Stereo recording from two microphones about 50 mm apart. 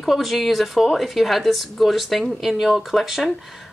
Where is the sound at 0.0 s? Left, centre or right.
Centre.